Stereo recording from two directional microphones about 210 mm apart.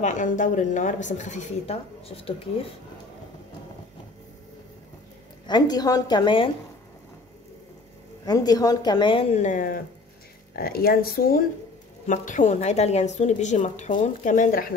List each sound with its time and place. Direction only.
0.0 s a woman's voice: 35° left (ahead or behind)
5.5 s a woman's voice: 20° left (ahead or behind)
8.3 s a woman's voice: 15° left (ahead or behind); by 14.7 s 40° left (ahead or behind)